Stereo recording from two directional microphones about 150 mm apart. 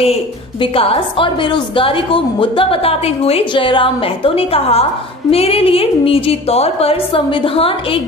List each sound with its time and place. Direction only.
0.0 s a woman's voice: 40° left (ahead or behind)